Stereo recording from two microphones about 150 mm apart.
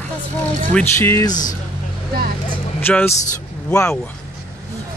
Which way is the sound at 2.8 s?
10° left (ahead or behind).